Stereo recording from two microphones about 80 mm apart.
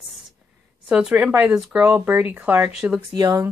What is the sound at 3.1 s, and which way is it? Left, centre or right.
Speech, right.